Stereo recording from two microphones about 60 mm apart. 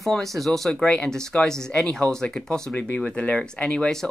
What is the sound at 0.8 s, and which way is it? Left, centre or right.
Speech, centre.